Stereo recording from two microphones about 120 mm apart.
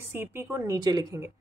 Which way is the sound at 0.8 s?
35° right (ahead or behind).